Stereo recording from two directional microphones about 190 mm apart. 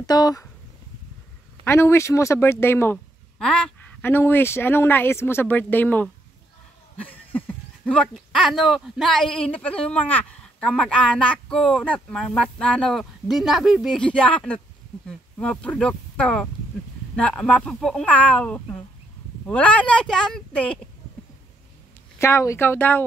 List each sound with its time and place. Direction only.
0.0 s speech: 20° left (ahead or behind)
1.6 s speech: 15° left (ahead or behind)
7.1 s speech: 10° left (ahead or behind)
22.2 s speech: 15° left (ahead or behind)